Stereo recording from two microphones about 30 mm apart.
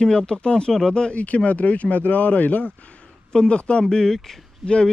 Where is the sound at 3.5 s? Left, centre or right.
Left.